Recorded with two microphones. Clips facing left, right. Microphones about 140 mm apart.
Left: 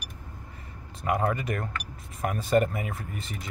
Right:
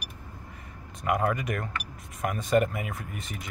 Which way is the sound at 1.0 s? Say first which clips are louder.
Even; 30° left (ahead or behind).